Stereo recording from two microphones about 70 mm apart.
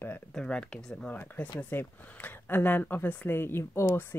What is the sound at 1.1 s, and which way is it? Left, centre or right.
Speech, left.